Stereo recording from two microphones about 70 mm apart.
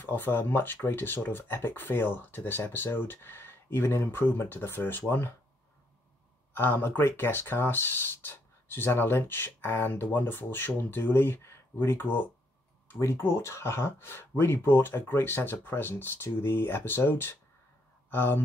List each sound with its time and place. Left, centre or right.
0.0 s speech: left
6.5 s speech: left